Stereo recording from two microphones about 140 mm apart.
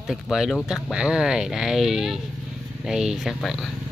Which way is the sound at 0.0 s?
5° right (ahead or behind).